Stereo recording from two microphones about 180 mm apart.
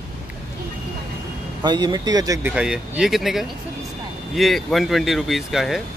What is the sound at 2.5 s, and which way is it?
Speech, 5° right (ahead or behind).